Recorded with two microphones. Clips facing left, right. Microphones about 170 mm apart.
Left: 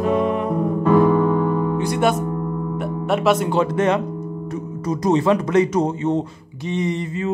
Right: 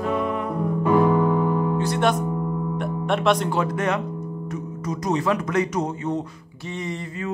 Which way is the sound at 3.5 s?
25° left (ahead or behind).